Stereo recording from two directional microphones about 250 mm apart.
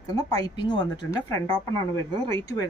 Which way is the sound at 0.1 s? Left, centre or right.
Centre.